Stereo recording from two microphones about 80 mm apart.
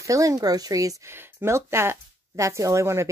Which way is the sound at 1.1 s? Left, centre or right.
Right.